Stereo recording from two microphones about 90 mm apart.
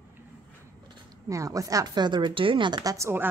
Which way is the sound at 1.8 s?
55° right (ahead or behind).